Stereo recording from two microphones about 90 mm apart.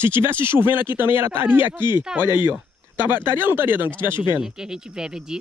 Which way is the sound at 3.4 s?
25° right (ahead or behind).